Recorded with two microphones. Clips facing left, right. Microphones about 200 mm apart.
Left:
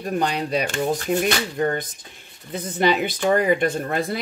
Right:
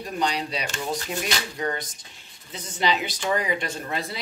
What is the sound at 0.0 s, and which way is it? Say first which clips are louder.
Speech: left 4 dB; 55° left (ahead or behind).